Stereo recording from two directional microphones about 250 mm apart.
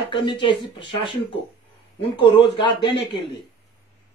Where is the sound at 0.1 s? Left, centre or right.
Centre.